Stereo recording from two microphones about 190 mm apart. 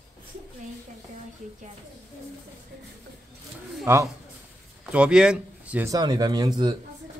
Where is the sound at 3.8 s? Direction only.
15° right (ahead or behind).